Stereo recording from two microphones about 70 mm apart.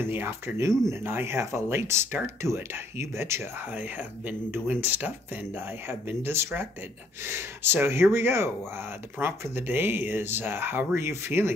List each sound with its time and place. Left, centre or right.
0.0 s speech: right
3.7 s speech: right